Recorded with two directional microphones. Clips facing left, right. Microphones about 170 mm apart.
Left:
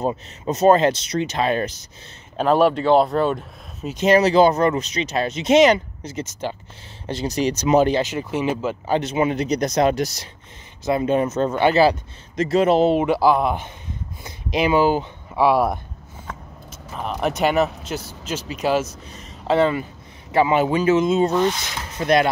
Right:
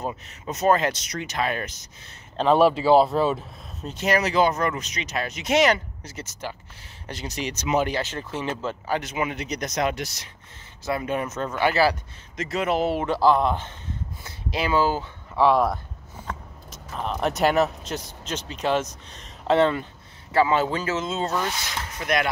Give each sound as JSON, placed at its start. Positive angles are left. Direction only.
{"t": 0.0, "sound": "speech", "side_deg": 30}
{"t": 2.3, "sound": "speech", "side_deg": 0}
{"t": 3.9, "sound": "speech", "side_deg": 25}
{"t": 7.1, "sound": "speech", "side_deg": 30}
{"t": 8.0, "sound": "speech", "side_deg": 15}
{"t": 8.8, "sound": "speech", "side_deg": 25}
{"t": 10.9, "sound": "speech", "side_deg": 25}
{"t": 12.4, "sound": "speech", "side_deg": 30}
{"t": 20.2, "sound": "speech", "side_deg": 15}
{"t": 21.9, "sound": "speech", "side_deg": 30}